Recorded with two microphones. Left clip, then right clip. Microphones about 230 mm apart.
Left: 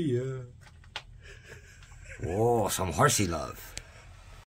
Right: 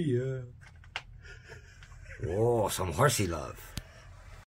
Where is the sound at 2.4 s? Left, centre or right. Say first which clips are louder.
Left 2 dB; left.